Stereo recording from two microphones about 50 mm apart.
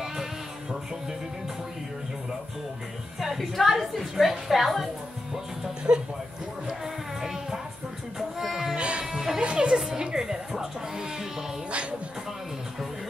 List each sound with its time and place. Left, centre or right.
0.0 s music: centre
3.2 s a woman's voice: centre
5.9 s speech: right
6.7 s music: centre
8.2 s a sound: centre
8.7 s music: right
9.0 s music: centre
9.4 s music: centre